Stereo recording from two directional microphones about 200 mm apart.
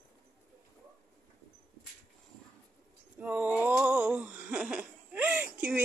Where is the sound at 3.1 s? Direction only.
5° right (ahead or behind).